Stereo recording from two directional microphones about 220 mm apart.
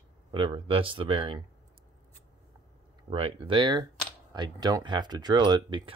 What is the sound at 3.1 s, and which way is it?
Speech, 25° right (ahead or behind).